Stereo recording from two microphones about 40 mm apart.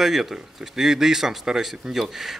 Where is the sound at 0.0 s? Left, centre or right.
Centre.